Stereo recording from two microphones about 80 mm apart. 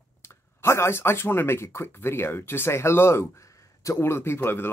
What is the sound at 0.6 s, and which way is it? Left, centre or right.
Speech, left.